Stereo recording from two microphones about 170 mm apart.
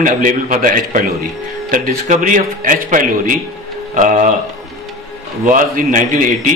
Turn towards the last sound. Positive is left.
turn(degrees=-50)  # may be behind; listen again after turning